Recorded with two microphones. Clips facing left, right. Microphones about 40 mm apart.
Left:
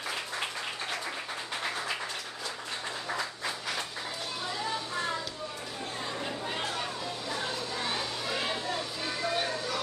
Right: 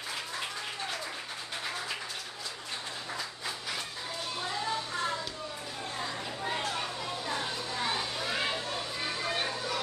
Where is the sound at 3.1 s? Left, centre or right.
Left.